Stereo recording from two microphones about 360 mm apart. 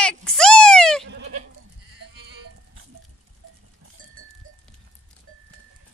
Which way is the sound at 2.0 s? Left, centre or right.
Right.